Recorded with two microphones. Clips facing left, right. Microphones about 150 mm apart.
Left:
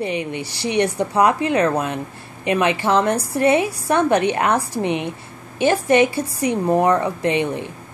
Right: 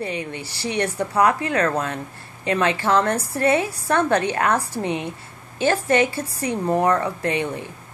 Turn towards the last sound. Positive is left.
turn(degrees=20)  # may be behind; listen again after turning